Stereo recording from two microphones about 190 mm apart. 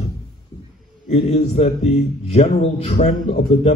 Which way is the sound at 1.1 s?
35° left (ahead or behind).